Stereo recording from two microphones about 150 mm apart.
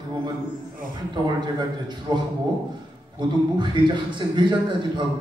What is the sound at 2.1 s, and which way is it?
Speech, 30° right (ahead or behind).